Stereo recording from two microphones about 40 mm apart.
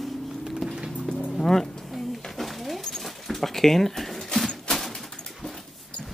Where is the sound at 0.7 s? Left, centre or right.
Centre.